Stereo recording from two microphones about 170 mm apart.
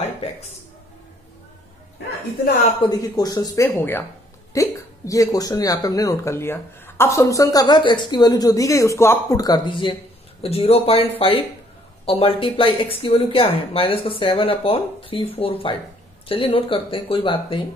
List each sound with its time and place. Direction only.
0.0 s speech: 35° left (ahead or behind)
2.8 s speech: 20° left (ahead or behind)